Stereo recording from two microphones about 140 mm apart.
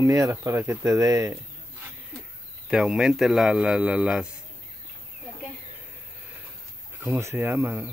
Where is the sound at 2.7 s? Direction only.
5° right (ahead or behind).